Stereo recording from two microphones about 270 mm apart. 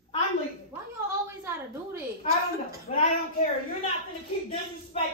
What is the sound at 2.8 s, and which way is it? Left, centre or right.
Speech, left.